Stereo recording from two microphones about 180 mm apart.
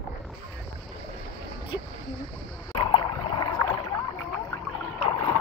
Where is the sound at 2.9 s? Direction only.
25° left (ahead or behind).